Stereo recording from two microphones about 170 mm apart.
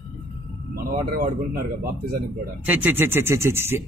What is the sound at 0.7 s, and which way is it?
Speech, 55° right (ahead or behind).